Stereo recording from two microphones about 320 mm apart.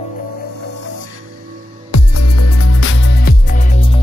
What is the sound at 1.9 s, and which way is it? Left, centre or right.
Music, left.